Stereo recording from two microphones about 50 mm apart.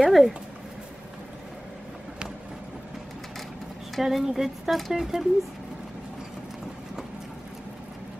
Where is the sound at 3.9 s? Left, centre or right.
Centre.